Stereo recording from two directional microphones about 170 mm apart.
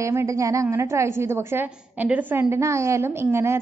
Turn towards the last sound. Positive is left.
turn(degrees=-15)  # may be behind; listen again after turning